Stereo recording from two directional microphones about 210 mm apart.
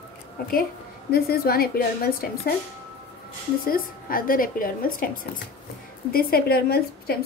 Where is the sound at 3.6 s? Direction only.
45° left (ahead or behind).